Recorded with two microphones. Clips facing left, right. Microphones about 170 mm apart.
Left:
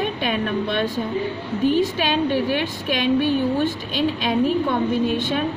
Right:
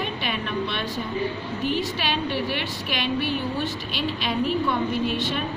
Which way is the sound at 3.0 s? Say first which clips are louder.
Left 7 dB; 45° left (ahead or behind).